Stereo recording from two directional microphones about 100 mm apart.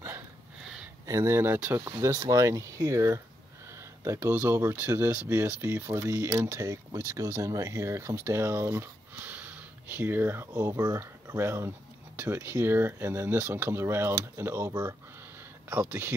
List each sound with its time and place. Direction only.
1.0 s speech: 30° right (ahead or behind)
10.7 s speech: 35° right (ahead or behind)
11.0 s speech: 25° right (ahead or behind)